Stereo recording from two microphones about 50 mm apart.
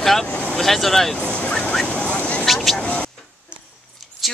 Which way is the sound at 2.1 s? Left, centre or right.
Left.